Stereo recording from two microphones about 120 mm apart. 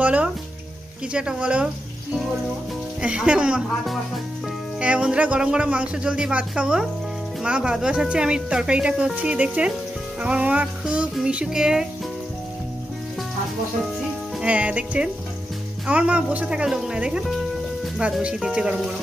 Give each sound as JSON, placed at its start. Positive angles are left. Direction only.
{"t": 0.0, "sound": "music", "side_deg": -10}
{"t": 1.1, "sound": "speech", "side_deg": -10}
{"t": 3.0, "sound": "speech", "side_deg": -5}
{"t": 14.4, "sound": "speech", "side_deg": -10}